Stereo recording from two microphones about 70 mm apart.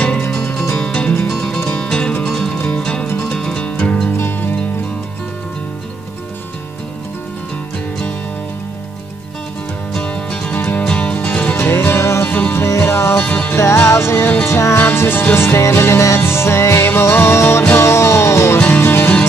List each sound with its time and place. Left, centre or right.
0.7 s music: centre
4.2 s music: left
9.9 s music: centre; by 12.3 s left
12.3 s music: left
12.5 s music: left
13.2 s music: left
13.6 s music: left
18.7 s music: left